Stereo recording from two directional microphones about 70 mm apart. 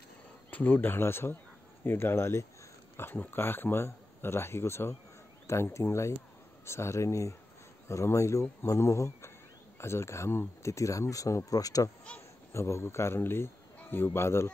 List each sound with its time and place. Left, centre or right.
0.5 s speech: left
12.5 s speech: left